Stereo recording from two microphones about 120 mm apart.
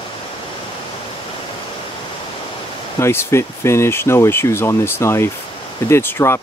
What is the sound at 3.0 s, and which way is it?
Speech, 20° left (ahead or behind).